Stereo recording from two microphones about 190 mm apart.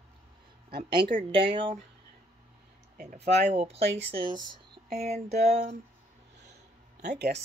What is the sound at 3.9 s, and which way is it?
Speech, 70° right (ahead or behind).